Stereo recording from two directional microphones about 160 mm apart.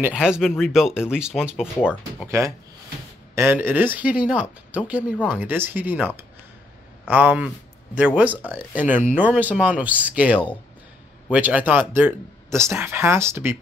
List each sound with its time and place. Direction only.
0.0 s speech: 5° right (ahead or behind)
2.2 s speech: 20° right (ahead or behind)